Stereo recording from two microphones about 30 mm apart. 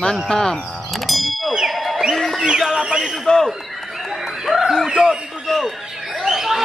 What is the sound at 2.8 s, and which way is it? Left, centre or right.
Speech, right.